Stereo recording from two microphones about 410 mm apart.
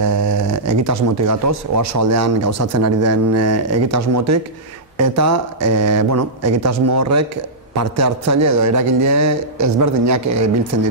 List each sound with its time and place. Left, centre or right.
0.0 s speech: right